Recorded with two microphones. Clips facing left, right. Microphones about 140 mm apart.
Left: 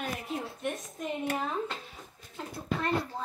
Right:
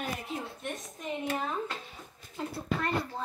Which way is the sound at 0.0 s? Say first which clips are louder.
Left 1 dB; centre (ahead or behind).